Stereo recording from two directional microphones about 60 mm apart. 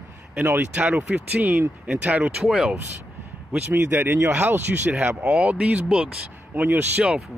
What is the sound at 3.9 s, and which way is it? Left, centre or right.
Speech, right.